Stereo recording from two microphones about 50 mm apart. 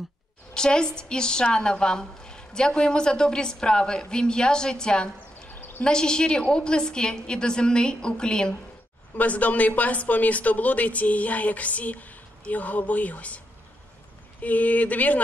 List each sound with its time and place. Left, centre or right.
0.6 s a woman's voice: centre
5.5 s a sound: left
5.9 s a woman's voice: centre
9.1 s speech: left
14.4 s speech: left